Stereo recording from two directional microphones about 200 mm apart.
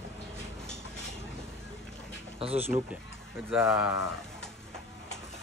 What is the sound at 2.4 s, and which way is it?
Speech, 30° right (ahead or behind).